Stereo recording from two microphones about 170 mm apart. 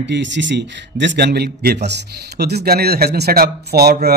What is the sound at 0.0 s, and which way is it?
Speech, 90° right.